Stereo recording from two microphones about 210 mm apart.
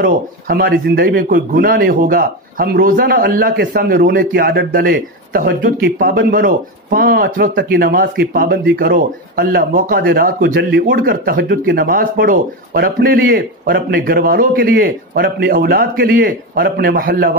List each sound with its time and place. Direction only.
0.0 s speech: 50° right (ahead or behind)